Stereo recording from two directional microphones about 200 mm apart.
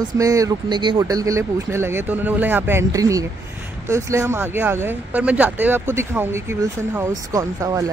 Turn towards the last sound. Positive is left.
turn(degrees=-15)  # may be behind; listen again after turning